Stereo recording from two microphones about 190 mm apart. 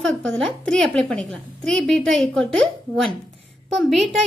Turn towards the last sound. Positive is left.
turn(degrees=0)  # may be behind; listen again after turning